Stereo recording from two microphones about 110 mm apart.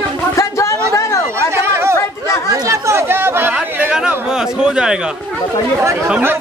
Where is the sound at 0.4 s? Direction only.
30° left (ahead or behind).